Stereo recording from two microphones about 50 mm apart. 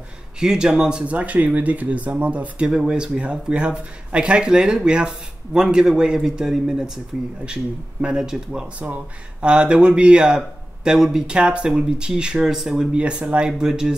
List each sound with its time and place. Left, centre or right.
0.4 s speech: centre
1.1 s speech: right
2.6 s speech: centre
8.7 s speech: right; by 13.0 s centre
13.0 s speech: right